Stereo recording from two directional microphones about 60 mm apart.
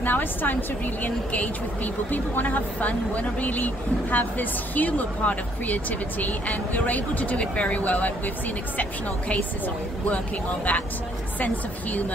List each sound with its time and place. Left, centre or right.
0.0 s a woman's voice: left
10.0 s speech: left